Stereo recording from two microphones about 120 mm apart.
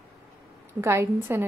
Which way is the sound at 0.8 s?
20° right (ahead or behind).